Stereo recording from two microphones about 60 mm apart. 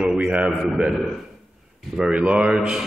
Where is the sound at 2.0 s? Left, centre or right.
Right.